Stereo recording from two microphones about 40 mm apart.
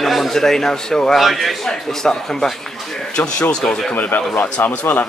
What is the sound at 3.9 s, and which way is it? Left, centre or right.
Speech, left.